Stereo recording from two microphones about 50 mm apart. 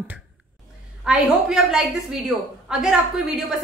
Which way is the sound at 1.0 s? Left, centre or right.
Centre.